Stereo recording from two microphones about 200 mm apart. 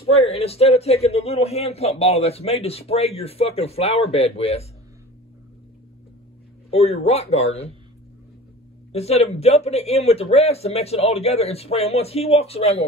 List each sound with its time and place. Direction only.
0.0 s a man's voice: 30° left (ahead or behind)
6.7 s a man's voice: 30° left (ahead or behind)
8.9 s a man's voice: 30° left (ahead or behind)